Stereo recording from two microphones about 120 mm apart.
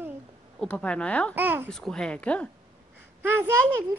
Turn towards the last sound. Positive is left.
turn(degrees=-15)  # may be behind; listen again after turning